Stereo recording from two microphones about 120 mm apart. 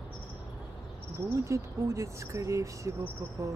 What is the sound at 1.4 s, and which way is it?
Speech, 25° right (ahead or behind).